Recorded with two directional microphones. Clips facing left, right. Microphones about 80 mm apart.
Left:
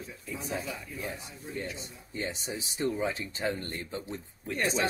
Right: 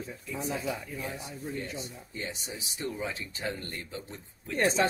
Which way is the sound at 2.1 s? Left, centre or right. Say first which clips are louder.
Left 4 dB; left.